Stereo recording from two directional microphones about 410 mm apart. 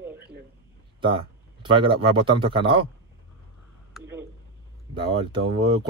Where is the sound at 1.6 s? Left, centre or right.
Centre.